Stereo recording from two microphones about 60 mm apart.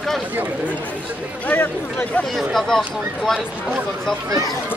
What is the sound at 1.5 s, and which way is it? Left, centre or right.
Speech, left.